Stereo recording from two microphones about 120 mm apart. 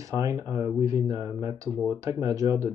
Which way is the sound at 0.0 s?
25° right (ahead or behind).